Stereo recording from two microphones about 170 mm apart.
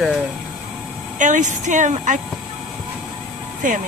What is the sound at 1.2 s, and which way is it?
A woman's voice, 45° right (ahead or behind).